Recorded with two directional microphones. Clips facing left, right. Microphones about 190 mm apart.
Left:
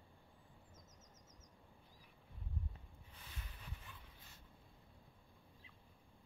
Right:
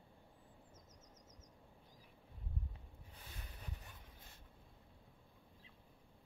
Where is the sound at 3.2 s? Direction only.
40° right (ahead or behind).